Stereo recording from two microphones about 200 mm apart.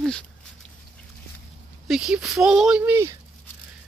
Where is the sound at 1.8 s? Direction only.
Centre (ahead or behind).